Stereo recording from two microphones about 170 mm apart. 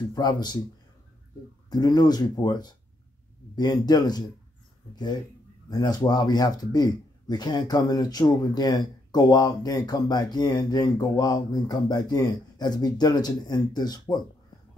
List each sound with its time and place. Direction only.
0.1 s speech: 25° left (ahead or behind)
1.7 s speech: 25° left (ahead or behind)
5.7 s speech: 20° left (ahead or behind)